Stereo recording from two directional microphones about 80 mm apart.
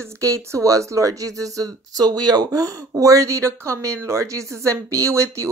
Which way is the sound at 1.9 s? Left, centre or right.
Right.